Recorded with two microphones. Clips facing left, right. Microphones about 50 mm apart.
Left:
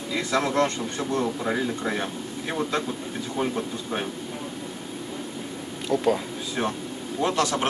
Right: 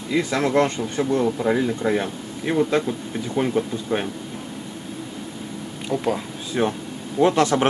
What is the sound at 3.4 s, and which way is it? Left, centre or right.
Speech, right.